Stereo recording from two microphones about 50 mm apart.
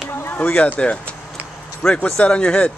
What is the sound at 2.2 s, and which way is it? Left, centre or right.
Speech, left.